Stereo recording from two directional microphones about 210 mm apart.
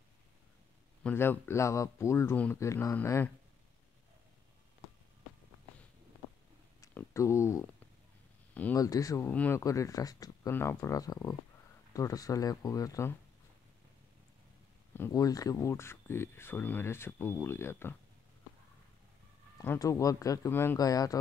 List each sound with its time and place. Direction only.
1.0 s speech: 10° left (ahead or behind)
6.8 s a sound: 10° left (ahead or behind)
8.5 s speech: 10° left (ahead or behind)
15.0 s speech: 15° left (ahead or behind)
19.6 s speech: 15° left (ahead or behind)